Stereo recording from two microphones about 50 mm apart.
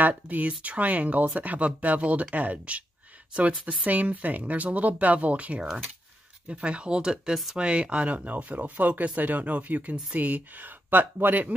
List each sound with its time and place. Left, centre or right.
0.0 s speech: right